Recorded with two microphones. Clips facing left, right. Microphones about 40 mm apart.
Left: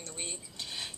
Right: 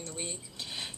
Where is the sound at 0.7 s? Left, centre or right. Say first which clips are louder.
Right 1 dB; centre.